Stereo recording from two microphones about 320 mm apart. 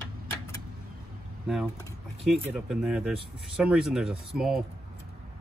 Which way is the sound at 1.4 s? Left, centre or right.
Centre.